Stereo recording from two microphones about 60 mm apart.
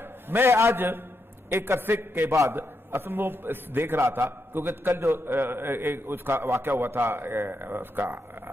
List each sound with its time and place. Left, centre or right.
0.5 s a man's voice: right
0.7 s a man's voice: right